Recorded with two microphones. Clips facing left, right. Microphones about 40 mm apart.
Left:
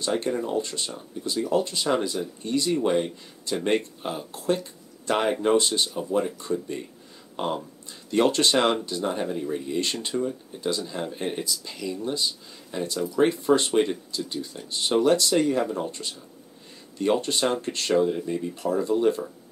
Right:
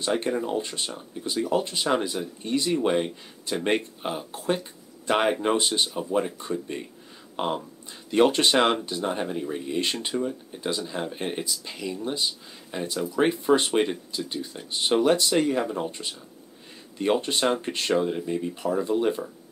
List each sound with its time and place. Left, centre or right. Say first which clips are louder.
0.0 s speech: even; right